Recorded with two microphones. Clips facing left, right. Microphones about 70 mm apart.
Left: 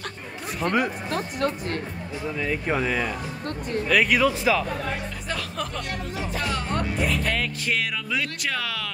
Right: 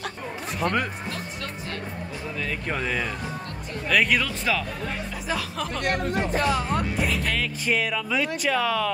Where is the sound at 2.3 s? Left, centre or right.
Centre.